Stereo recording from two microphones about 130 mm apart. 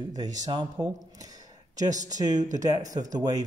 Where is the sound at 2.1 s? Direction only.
30° right (ahead or behind).